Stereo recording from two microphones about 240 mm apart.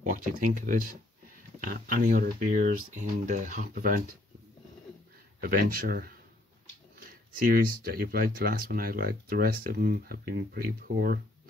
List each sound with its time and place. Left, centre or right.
0.0 s speech: right
5.4 s speech: right
7.5 s speech: right